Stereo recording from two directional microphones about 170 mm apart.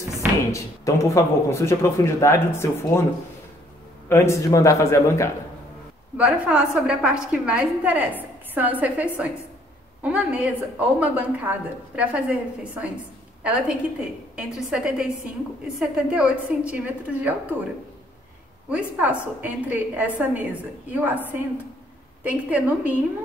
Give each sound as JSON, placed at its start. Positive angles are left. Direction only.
{"t": 0.5, "sound": "speech", "side_deg": 20}
{"t": 4.1, "sound": "speech", "side_deg": 15}
{"t": 6.1, "sound": "a woman's voice", "side_deg": -5}
{"t": 18.7, "sound": "a woman's voice", "side_deg": -5}
{"t": 22.2, "sound": "a woman's voice", "side_deg": -10}